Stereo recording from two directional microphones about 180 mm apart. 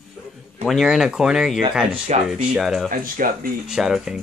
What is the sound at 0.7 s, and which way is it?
Speech, centre (ahead or behind).